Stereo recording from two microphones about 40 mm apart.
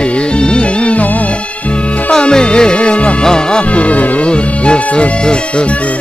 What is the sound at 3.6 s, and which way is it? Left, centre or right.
Music, left.